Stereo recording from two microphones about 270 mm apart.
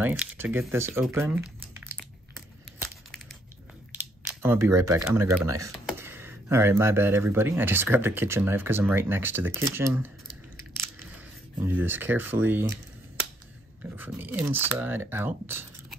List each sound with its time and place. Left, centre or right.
0.0 s speech: centre
3.9 s a sound: centre
5.0 s speech: centre
11.6 s speech: centre
13.9 s speech: centre